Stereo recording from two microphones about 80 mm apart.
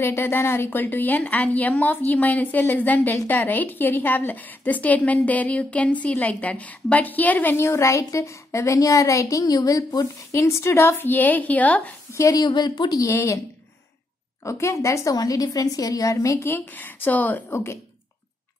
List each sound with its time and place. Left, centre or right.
0.0 s a woman's voice: left
12.1 s a sound: left
12.4 s a woman's voice: left
13.0 s a woman's voice: left
14.4 s a woman's voice: left
17.5 s a woman's voice: left